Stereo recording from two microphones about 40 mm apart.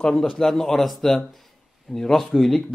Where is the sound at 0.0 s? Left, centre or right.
Centre.